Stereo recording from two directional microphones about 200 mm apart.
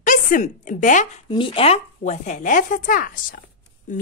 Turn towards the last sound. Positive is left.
turn(degrees=45)  # may be behind; listen again after turning